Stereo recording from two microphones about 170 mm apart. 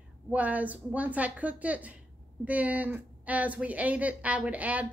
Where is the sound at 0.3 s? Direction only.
10° right (ahead or behind).